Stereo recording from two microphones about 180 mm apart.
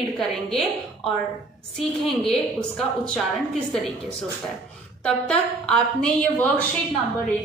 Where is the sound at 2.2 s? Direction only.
5° left (ahead or behind).